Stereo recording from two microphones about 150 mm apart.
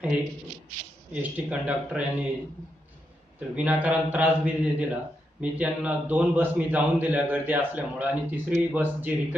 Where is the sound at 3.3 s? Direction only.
10° right (ahead or behind).